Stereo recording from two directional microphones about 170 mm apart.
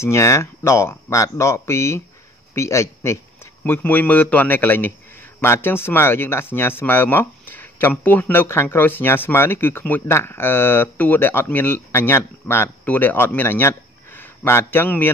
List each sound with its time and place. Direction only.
0.0 s a man's voice: 15° left (ahead or behind)